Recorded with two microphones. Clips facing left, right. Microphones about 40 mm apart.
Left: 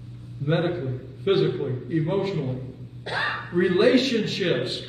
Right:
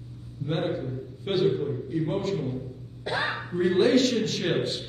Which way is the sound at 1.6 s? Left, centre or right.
Left.